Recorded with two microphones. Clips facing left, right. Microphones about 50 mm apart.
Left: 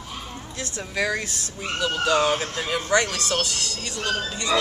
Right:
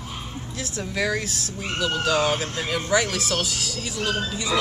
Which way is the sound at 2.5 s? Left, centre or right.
Centre.